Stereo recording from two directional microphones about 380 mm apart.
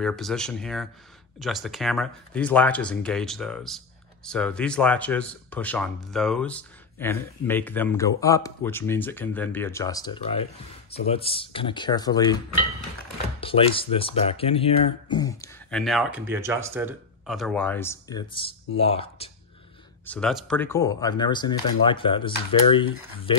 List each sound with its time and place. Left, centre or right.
0.0 s speech: centre
13.4 s speech: centre
20.1 s speech: centre